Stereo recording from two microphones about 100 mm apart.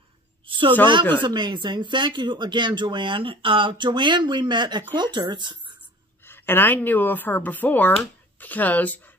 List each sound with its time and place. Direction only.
0.5 s a sound: 55° right (ahead or behind)
1.2 s speech: 50° right (ahead or behind)
6.2 s speech: 20° left (ahead or behind)